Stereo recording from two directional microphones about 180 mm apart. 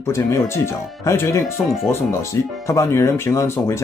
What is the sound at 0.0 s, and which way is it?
Speech, 15° left (ahead or behind).